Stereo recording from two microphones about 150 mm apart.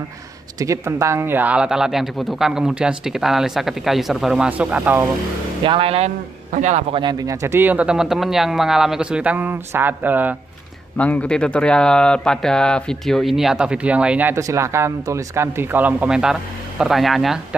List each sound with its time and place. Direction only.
0.6 s speech: 20° right (ahead or behind)
5.6 s speech: 35° right (ahead or behind)
6.5 s a man's voice: 55° right (ahead or behind)
6.9 s speech: 30° right (ahead or behind); by 10.3 s 10° right (ahead or behind)
11.0 s speech: 10° left (ahead or behind)